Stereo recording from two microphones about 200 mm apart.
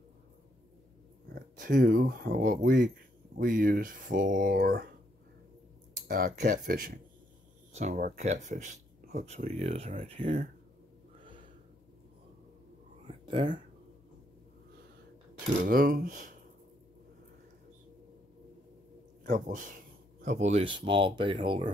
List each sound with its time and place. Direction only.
1.6 s speech: 45° right (ahead or behind)
6.0 s speech: 45° right (ahead or behind); by 10.3 s 30° right (ahead or behind)
13.0 s whispering: 25° right (ahead or behind)
15.6 s speech: 45° right (ahead or behind)
19.2 s speech: 40° right (ahead or behind); by 21.6 s 25° right (ahead or behind)